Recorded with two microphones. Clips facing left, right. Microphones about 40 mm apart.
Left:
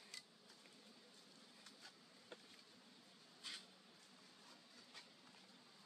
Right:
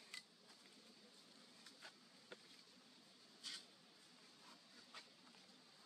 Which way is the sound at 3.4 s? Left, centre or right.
Left.